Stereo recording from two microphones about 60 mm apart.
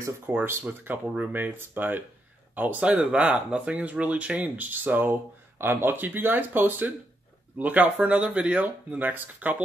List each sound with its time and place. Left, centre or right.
0.3 s speech: right